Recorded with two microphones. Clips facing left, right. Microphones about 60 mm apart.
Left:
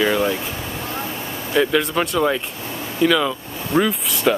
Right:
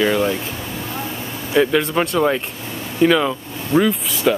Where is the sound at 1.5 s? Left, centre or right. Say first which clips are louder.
Right 2 dB; centre.